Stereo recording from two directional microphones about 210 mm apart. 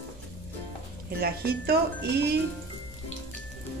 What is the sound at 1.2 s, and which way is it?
A woman's voice, 50° right (ahead or behind).